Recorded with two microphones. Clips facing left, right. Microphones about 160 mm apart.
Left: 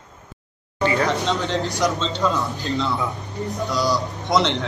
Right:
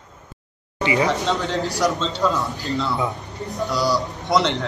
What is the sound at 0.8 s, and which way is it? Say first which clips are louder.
Speech: even; 10° right (ahead or behind).